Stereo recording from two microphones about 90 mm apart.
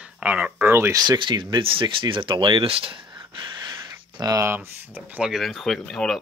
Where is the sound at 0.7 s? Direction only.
30° right (ahead or behind).